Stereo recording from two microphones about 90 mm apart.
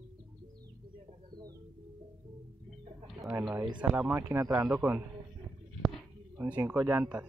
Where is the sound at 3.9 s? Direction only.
20° right (ahead or behind).